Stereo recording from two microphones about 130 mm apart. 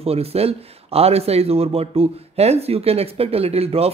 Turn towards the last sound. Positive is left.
turn(degrees=-50)  # may be behind; listen again after turning